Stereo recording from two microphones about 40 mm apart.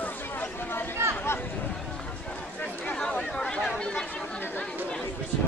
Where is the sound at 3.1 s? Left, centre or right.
Left.